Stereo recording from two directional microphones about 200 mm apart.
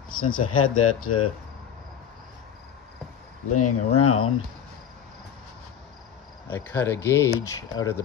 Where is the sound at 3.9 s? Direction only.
90° left.